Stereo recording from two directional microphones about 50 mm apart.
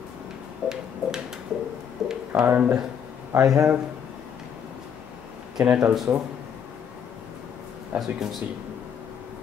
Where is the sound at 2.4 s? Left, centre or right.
Right.